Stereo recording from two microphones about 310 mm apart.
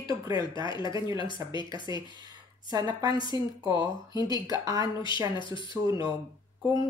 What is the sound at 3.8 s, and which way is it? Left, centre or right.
Speech, centre.